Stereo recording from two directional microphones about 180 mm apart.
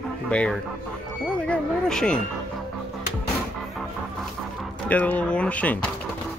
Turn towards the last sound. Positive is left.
turn(degrees=10)  # may be behind; listen again after turning